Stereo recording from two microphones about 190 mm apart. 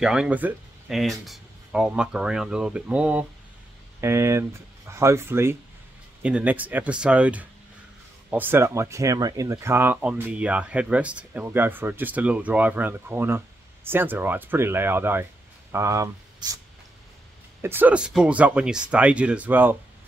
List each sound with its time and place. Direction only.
0.0 s speech: 5° right (ahead or behind)
17.6 s speech: 10° right (ahead or behind)